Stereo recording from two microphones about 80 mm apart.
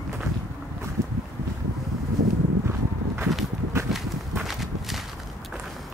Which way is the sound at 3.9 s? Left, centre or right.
Centre.